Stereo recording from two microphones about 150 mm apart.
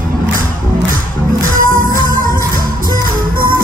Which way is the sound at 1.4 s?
65° right (ahead or behind).